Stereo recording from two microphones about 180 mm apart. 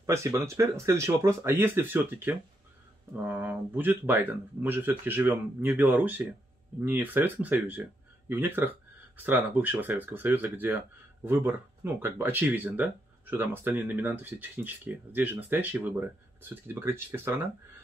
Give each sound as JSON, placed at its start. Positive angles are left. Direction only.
{"t": 0.0, "sound": "speech", "side_deg": -15}